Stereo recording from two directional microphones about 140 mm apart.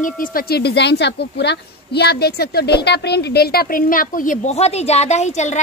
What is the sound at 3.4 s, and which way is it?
A woman's voice, 90° left.